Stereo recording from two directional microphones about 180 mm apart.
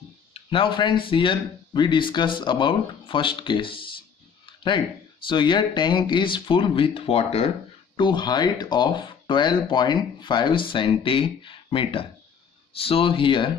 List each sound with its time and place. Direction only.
0.3 s speech: 30° left (ahead or behind)